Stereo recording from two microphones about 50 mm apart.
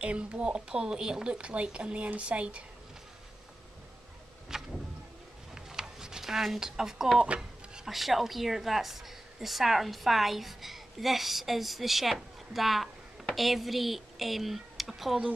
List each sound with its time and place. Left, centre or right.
0.0 s speech: right
4.5 s vehicle: centre
5.5 s a sound: centre
7.9 s a woman's voice: centre